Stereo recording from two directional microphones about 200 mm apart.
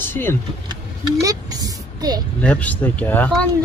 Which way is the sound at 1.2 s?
20° right (ahead or behind).